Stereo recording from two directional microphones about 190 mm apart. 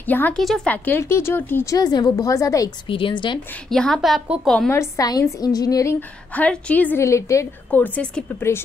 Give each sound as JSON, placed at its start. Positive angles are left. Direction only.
{"t": 0.0, "sound": "a woman's voice", "side_deg": 10}
{"t": 3.7, "sound": "a woman's voice", "side_deg": 0}